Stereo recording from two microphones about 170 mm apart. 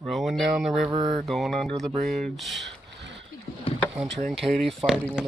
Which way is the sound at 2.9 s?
90° right.